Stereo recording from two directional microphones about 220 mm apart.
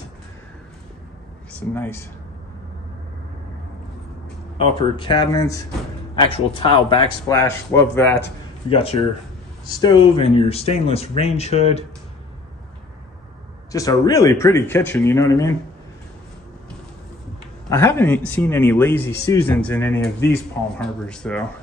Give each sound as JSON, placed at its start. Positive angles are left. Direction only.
{"t": 1.5, "sound": "speech", "side_deg": 5}
{"t": 4.6, "sound": "speech", "side_deg": 25}
{"t": 8.6, "sound": "speech", "side_deg": 30}
{"t": 13.7, "sound": "a man's voice", "side_deg": 15}
{"t": 17.6, "sound": "a man's voice", "side_deg": 10}